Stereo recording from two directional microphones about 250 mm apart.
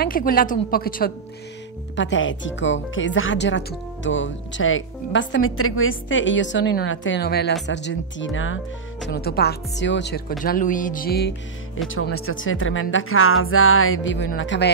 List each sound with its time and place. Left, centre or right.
0.0 s speech: left
2.0 s speech: left
9.0 s speech: left
10.4 s speech: left
11.9 s speech: left